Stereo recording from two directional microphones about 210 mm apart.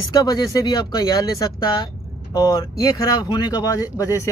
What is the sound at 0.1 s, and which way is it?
Speech, 20° left (ahead or behind).